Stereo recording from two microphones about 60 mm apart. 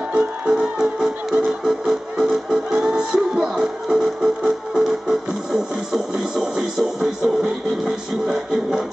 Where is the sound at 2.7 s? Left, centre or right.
Centre.